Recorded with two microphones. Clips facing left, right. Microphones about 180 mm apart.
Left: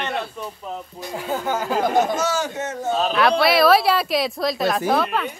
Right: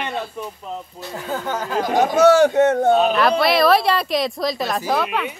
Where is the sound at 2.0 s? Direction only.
60° right (ahead or behind).